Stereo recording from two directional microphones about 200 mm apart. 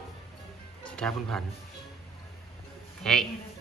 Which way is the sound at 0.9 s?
5° left (ahead or behind).